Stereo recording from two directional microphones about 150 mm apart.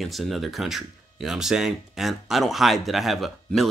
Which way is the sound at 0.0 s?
Centre (ahead or behind).